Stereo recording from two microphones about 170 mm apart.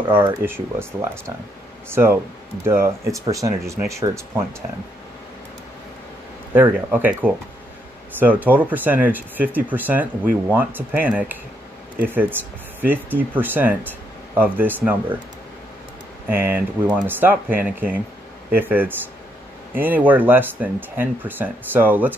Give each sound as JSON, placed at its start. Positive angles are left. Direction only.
{"t": 0.1, "sound": "speech", "side_deg": -15}
{"t": 6.5, "sound": "speech", "side_deg": -10}
{"t": 16.3, "sound": "speech", "side_deg": -10}